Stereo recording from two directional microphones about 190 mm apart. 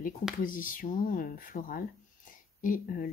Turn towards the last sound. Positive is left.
turn(degrees=45)  # may be behind; listen again after turning